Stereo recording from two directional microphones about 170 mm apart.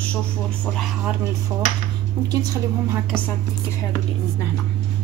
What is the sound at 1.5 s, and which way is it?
Cutlery, 10° right (ahead or behind).